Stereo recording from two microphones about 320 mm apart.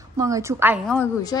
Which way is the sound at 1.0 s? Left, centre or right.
Centre.